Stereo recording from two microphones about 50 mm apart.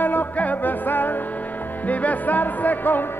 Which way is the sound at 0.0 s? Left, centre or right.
Left.